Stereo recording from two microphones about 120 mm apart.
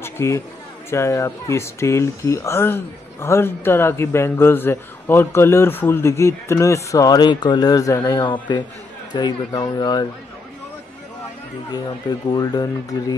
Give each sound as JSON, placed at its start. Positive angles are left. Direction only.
{"t": 0.0, "sound": "a sound", "side_deg": 20}
{"t": 0.8, "sound": "speech", "side_deg": 25}
{"t": 11.7, "sound": "speech", "side_deg": 35}